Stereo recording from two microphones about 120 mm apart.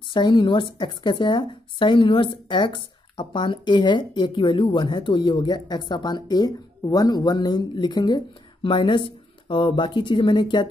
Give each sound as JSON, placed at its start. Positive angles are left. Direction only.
{"t": 0.1, "sound": "speech", "side_deg": 40}